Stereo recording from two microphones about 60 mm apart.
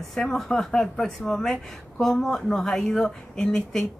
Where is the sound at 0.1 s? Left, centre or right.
Centre.